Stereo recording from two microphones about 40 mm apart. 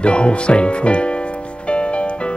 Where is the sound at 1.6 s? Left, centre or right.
Left.